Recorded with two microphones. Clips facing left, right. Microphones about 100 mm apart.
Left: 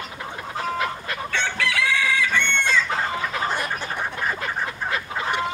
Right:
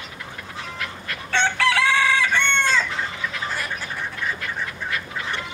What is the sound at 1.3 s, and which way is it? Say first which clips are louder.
Chicken: right 6 dB; 35° right (ahead or behind).